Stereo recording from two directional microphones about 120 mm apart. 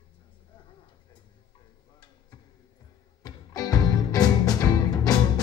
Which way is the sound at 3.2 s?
30° left (ahead or behind).